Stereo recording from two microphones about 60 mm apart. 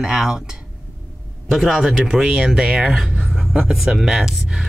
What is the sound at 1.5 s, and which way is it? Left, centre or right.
Speech, centre.